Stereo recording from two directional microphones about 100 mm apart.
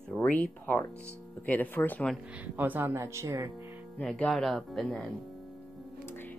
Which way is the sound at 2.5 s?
20° right (ahead or behind).